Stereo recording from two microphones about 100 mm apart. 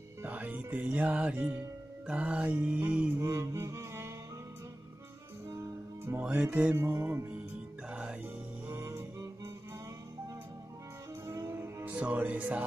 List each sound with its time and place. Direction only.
0.2 s speech: 15° right (ahead or behind)
2.0 s music: 10° right (ahead or behind)
3.2 s music: 30° right (ahead or behind)
6.1 s music: 25° right (ahead or behind)
6.5 s music: 10° right (ahead or behind)
6.8 s music: 25° right (ahead or behind)
7.9 s music: 10° right (ahead or behind)
8.6 s music: 25° right (ahead or behind)
11.2 s music: 25° right (ahead or behind)
11.9 s music: 15° right (ahead or behind)